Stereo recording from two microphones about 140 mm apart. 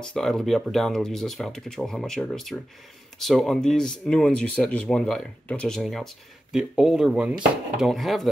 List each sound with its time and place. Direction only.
0.0 s speech: 5° left (ahead or behind)